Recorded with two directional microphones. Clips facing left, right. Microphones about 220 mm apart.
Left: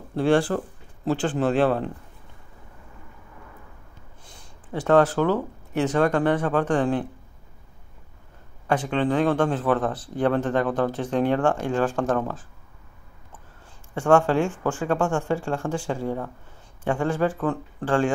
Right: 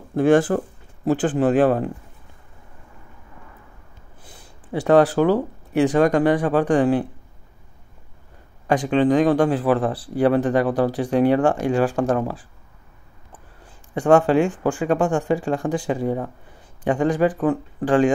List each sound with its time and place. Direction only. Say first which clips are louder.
0.1 s speech: right 4 dB; 15° right (ahead or behind)
4.7 s speech: right 3 dB; 15° right (ahead or behind)
8.6 s speech: right 5 dB; 15° right (ahead or behind)
13.9 s speech: right 4 dB; 15° right (ahead or behind)